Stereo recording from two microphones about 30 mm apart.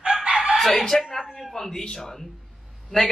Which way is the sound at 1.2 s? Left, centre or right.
Centre.